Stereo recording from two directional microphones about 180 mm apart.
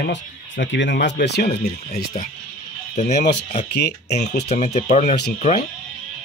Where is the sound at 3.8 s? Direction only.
70° left (ahead or behind).